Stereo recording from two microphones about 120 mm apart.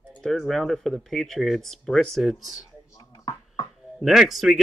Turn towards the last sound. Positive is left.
turn(degrees=0)  # may be behind; listen again after turning